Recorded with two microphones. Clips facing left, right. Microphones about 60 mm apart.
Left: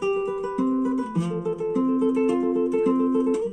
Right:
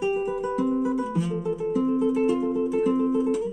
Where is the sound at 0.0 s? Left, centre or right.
Centre.